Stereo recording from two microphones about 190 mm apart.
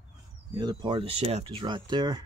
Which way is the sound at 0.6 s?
25° right (ahead or behind).